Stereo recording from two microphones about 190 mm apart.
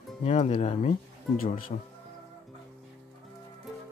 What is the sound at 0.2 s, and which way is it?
Speech, 35° left (ahead or behind).